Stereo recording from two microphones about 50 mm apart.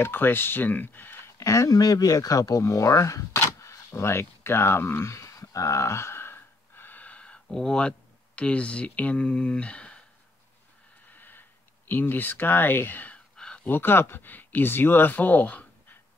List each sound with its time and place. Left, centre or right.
0.0 s speech: left
1.1 s a sound: left
2.6 s speech: left
3.3 s speech: left
5.1 s gasp: left
7.1 s a sound: left
7.5 s speech: centre
11.1 s a sound: left
11.9 s speech: left